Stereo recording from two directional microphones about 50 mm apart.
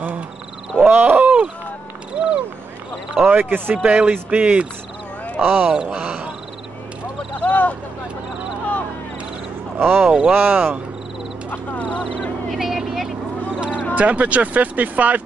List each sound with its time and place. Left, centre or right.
0.7 s wild animals: right
2.1 s a sound: centre
3.3 s speech: right
3.8 s speech: right
5.9 s speech: right
7.4 s speech: left
9.8 s speech: right
10.0 s speech: centre
10.3 s speech: right
11.5 s a sound: left
12.0 s a sound: centre
13.5 s a sound: centre
13.9 s speech: right